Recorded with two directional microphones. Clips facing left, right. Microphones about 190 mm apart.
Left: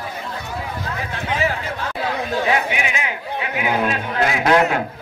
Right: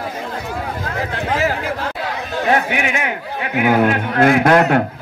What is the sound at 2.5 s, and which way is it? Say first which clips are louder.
A man's voice: right 3 dB; 55° right (ahead or behind).